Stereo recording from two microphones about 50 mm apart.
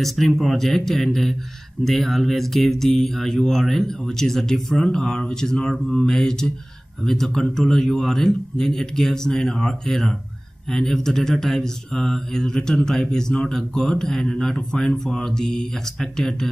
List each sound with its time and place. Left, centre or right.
0.0 s speech: centre